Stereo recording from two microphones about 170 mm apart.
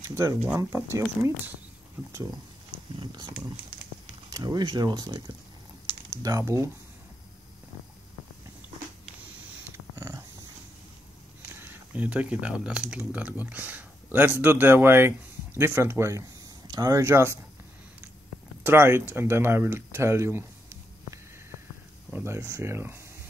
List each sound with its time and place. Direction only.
0.1 s speech: 20° right (ahead or behind)
3.0 s speech: 25° right (ahead or behind)
9.7 s dog: 15° right (ahead or behind)
11.6 s speech: 10° right (ahead or behind)
18.6 s speech: 15° right (ahead or behind)
22.1 s speech: 15° right (ahead or behind)